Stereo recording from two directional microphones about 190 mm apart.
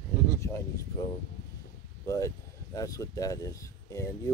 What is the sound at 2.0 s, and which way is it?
Speech, 15° left (ahead or behind).